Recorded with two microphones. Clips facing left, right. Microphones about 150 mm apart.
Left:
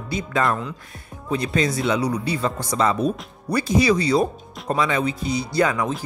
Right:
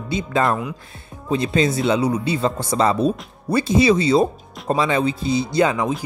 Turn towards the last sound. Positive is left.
turn(degrees=-20)  # may be behind; listen again after turning